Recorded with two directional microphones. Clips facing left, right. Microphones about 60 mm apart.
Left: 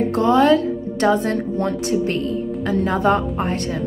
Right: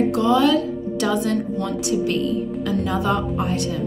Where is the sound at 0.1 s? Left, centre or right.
Left.